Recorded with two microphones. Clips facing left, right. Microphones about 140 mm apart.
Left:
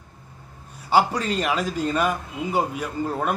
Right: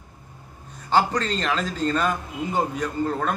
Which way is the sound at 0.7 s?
10° left (ahead or behind).